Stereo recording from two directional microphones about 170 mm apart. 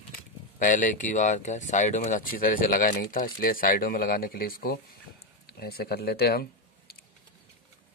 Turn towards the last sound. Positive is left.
turn(degrees=65)  # may be behind; listen again after turning